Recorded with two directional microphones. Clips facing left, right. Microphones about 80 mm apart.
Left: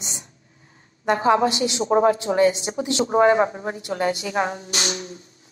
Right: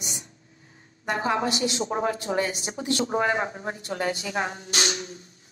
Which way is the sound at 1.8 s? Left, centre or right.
Left.